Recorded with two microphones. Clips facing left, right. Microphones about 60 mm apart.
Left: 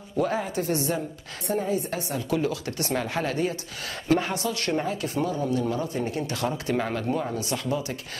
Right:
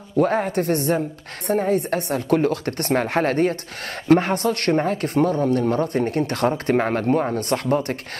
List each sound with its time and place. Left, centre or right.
0.2 s speech: right